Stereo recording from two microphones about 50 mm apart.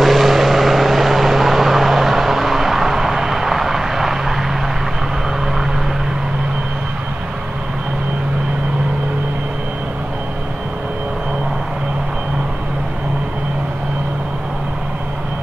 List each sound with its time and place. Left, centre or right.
0.0 s vehicle: centre